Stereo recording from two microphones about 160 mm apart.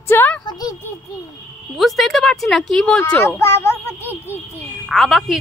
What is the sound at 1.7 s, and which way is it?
A child's voice, centre (ahead or behind).